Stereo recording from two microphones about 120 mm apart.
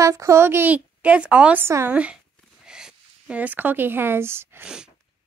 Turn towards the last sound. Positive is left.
turn(degrees=-5)  # may be behind; listen again after turning